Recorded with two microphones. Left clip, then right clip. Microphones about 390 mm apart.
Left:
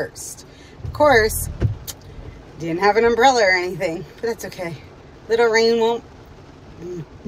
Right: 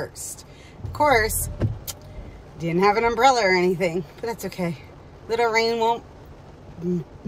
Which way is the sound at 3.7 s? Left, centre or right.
Right.